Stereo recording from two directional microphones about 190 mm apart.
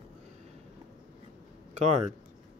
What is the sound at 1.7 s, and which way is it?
Speech, 35° right (ahead or behind).